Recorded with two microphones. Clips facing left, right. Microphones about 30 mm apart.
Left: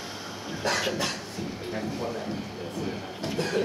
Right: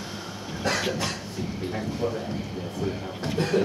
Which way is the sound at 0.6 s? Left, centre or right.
Centre.